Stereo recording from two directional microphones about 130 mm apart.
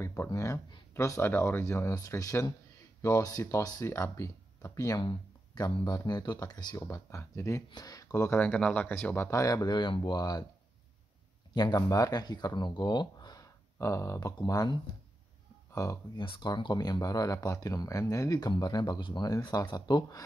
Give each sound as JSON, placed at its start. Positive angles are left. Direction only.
{"t": 0.0, "sound": "speech", "side_deg": 20}
{"t": 8.3, "sound": "speech", "side_deg": 10}
{"t": 11.5, "sound": "speech", "side_deg": 30}